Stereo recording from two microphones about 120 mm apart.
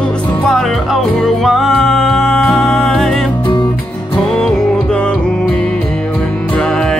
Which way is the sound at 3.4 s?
40° left (ahead or behind).